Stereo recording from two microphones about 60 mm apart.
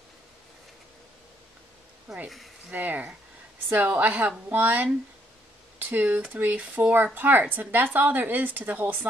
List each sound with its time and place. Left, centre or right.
2.2 s speech: centre
2.7 s a woman's voice: right